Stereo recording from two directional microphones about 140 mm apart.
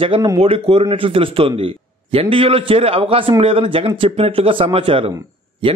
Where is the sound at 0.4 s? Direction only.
45° right (ahead or behind).